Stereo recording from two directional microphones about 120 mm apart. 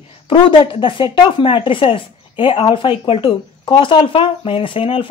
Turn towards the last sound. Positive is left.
turn(degrees=50)  # may be behind; listen again after turning